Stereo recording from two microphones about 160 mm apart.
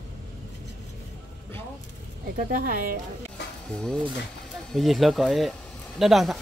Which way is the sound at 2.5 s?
60° right (ahead or behind).